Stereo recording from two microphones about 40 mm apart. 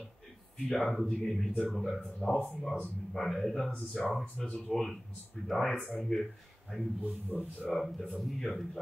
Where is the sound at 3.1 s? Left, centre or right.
Centre.